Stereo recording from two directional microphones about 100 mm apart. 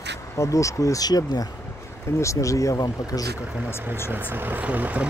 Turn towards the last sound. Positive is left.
turn(degrees=-15)  # may be behind; listen again after turning